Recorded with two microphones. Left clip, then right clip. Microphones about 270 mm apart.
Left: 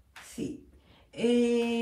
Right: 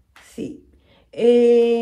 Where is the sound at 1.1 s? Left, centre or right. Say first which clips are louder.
Right 13 dB; centre.